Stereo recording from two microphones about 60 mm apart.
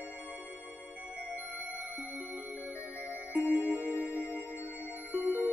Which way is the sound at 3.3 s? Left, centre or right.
Right.